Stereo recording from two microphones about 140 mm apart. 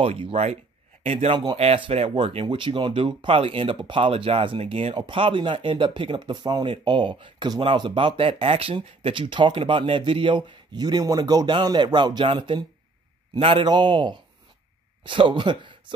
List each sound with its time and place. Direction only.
0.0 s speech: 45° right (ahead or behind)